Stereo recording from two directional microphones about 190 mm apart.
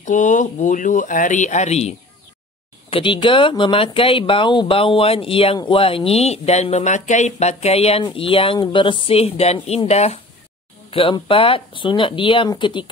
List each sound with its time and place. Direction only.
0.0 s speech: 40° left (ahead or behind); by 12.9 s 25° left (ahead or behind)